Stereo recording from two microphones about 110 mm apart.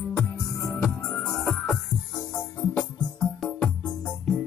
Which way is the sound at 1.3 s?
25° left (ahead or behind).